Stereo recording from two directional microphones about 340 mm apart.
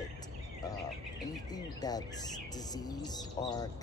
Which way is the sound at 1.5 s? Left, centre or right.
Centre.